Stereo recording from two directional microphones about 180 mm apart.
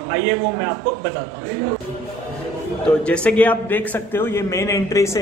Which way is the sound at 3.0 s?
5° left (ahead or behind).